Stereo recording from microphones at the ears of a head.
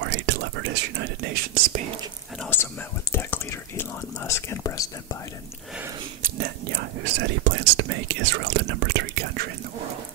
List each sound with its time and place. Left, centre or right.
0.0 s speech: right
2.5 s whispering: left
6.2 s whispering: right